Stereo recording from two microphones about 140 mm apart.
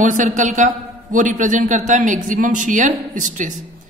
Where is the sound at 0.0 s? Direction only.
65° right (ahead or behind).